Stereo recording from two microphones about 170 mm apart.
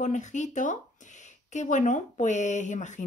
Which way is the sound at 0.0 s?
45° left (ahead or behind).